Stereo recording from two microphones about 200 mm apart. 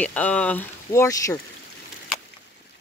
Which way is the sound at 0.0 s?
5° left (ahead or behind).